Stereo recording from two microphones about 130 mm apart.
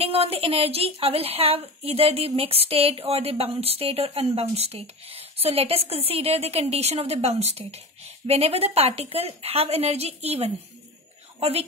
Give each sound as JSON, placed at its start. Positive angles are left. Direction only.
{"t": 0.0, "sound": "a woman's voice", "side_deg": -50}